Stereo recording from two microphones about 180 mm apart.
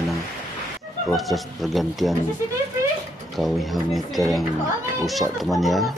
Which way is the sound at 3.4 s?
Centre (ahead or behind).